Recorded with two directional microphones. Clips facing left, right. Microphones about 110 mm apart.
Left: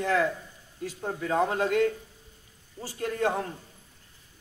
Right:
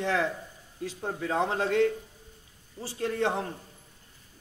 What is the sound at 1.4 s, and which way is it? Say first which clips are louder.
Speech: even; 30° right (ahead or behind).